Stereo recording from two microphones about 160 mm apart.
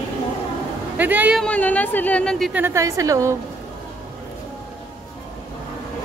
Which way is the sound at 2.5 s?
15° right (ahead or behind).